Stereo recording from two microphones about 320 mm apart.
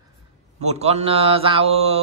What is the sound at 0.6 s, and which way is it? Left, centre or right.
Speech, centre.